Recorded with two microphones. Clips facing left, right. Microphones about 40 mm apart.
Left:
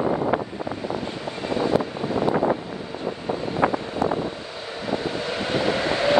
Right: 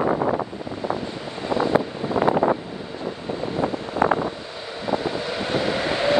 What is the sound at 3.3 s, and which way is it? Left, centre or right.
Vehicle, left.